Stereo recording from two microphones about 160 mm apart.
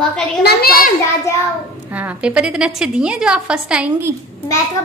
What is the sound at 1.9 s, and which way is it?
A woman's voice, 10° right (ahead or behind).